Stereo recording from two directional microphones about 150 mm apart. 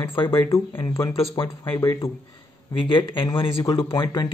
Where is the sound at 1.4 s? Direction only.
35° left (ahead or behind).